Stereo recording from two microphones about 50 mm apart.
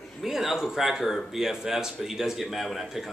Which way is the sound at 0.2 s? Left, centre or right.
Centre.